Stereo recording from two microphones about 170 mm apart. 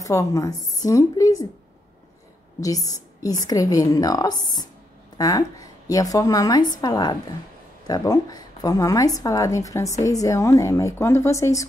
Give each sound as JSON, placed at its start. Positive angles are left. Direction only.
{"t": 0.0, "sound": "speech", "side_deg": 20}
{"t": 2.6, "sound": "speech", "side_deg": 20}